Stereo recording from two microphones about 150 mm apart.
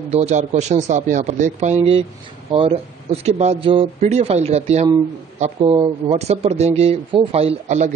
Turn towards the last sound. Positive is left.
turn(degrees=-50)  # may be behind; listen again after turning